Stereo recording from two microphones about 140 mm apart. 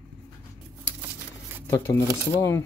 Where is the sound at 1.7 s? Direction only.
20° left (ahead or behind).